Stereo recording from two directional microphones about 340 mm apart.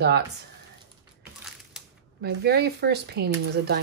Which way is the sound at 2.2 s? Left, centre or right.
Right.